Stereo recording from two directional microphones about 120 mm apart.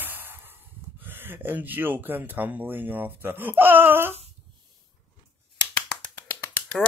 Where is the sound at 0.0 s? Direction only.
15° right (ahead or behind).